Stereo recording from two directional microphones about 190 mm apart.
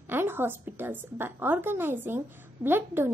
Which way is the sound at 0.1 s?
10° right (ahead or behind).